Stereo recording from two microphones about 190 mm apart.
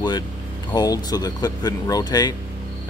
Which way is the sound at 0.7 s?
20° left (ahead or behind).